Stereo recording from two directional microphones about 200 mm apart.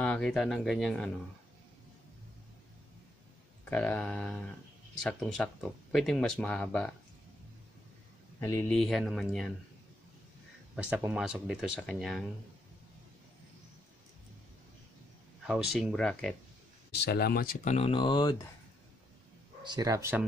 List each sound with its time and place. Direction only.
0.0 s speech: 5° left (ahead or behind)
3.7 s speech: 5° left (ahead or behind)
8.4 s speech: 10° left (ahead or behind)
8.7 s speech: centre (ahead or behind)
10.8 s speech: 5° right (ahead or behind)
15.4 s speech: centre (ahead or behind)
16.9 s speech: 55° left (ahead or behind)
17.7 s speech: 30° left (ahead or behind)
19.6 s speech: 20° right (ahead or behind)